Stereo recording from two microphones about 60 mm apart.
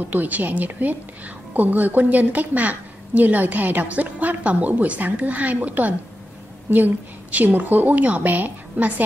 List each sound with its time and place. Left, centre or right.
0.1 s a woman's voice: right